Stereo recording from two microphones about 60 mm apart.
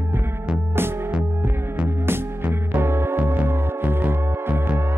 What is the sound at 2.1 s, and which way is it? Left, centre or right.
Music, right.